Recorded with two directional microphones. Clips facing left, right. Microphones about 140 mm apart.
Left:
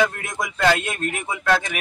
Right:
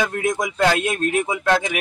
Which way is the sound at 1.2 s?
15° right (ahead or behind).